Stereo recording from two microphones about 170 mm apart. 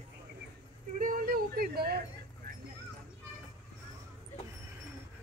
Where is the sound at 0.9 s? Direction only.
55° right (ahead or behind).